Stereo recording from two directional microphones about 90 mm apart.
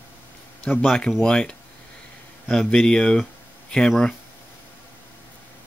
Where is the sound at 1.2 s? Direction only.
10° left (ahead or behind).